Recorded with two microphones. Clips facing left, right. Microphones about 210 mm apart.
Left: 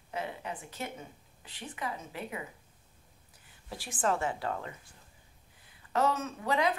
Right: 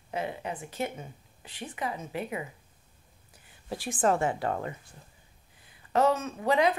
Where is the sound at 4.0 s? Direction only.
50° right (ahead or behind).